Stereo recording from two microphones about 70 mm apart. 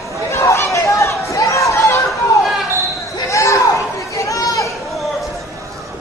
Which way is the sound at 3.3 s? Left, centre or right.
Left.